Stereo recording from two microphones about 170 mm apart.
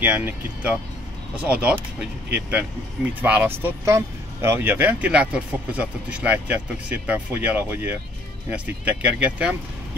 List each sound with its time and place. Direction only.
0.0 s speech: 10° right (ahead or behind)